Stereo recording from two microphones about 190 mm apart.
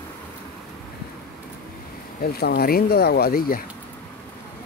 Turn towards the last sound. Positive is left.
turn(degrees=50)  # may be behind; listen again after turning